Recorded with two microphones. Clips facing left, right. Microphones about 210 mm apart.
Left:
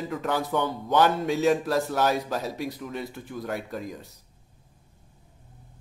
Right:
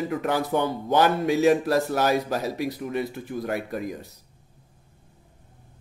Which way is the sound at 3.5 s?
60° right (ahead or behind).